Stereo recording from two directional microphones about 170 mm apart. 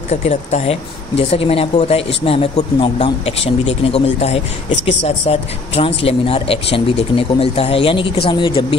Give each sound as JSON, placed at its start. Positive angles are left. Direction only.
{"t": 0.1, "sound": "speech", "side_deg": 40}